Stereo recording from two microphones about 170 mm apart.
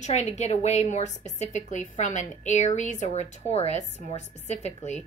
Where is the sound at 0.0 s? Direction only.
45° left (ahead or behind).